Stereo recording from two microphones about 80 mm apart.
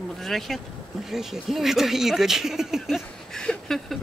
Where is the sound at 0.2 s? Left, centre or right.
Centre.